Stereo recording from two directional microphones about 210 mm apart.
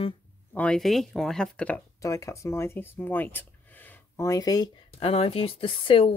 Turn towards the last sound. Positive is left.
turn(degrees=25)  # may be behind; listen again after turning